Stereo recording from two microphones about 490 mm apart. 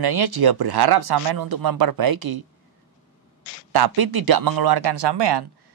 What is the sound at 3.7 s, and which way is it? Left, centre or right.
Speech, right.